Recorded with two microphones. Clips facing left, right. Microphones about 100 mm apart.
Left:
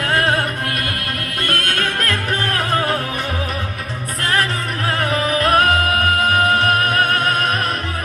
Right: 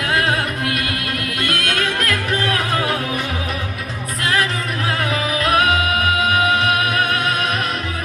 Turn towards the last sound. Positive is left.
turn(degrees=40)  # may be behind; listen again after turning